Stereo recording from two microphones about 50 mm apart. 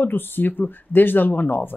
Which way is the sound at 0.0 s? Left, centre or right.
Left.